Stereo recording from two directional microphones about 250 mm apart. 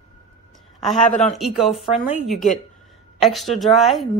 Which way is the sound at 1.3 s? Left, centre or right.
Centre.